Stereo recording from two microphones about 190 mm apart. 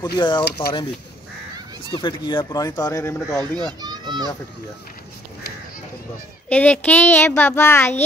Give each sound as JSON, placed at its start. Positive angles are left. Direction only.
{"t": 0.0, "sound": "speech", "side_deg": 20}
{"t": 1.9, "sound": "speech", "side_deg": 25}
{"t": 3.8, "sound": "children playing", "side_deg": -20}
{"t": 6.5, "sound": "a child's voice", "side_deg": 10}